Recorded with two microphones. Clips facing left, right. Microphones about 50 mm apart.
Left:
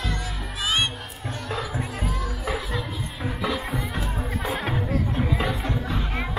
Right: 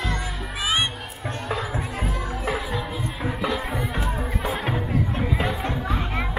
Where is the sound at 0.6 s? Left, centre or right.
Centre.